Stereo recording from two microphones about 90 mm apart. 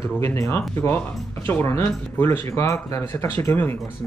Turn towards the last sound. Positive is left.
turn(degrees=25)  # may be behind; listen again after turning